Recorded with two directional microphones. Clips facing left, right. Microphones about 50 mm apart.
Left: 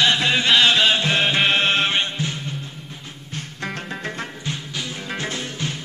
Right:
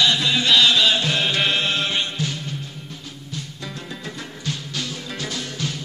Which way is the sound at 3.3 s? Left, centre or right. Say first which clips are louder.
Left 5 dB; left.